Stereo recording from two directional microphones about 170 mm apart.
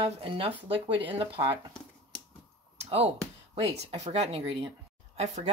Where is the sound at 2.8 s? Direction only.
35° right (ahead or behind).